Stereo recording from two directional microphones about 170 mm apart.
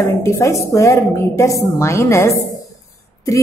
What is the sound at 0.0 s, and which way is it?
A woman's voice, 15° left (ahead or behind).